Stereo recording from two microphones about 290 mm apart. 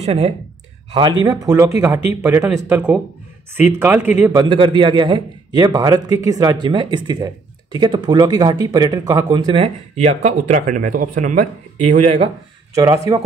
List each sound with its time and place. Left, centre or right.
0.0 s a man's voice: right
12.7 s a man's voice: centre